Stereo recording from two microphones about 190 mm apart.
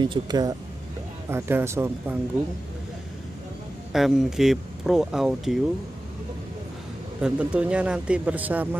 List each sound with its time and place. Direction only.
0.0 s speech: 20° right (ahead or behind)
3.9 s speech: centre (ahead or behind)
7.2 s speech: 5° right (ahead or behind)